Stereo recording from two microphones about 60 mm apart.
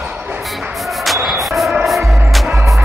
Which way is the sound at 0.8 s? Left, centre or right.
Centre.